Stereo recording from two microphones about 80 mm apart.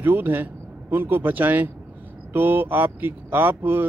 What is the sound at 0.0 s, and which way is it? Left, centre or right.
Speech, right.